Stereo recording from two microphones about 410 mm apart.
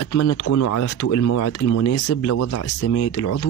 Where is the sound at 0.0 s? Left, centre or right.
Left.